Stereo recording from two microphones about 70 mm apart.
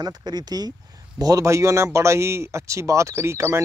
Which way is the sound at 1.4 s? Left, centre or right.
Right.